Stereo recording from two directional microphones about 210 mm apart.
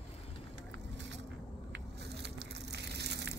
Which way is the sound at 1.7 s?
50° right (ahead or behind).